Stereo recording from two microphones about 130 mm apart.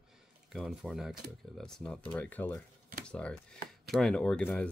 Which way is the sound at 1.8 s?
10° left (ahead or behind).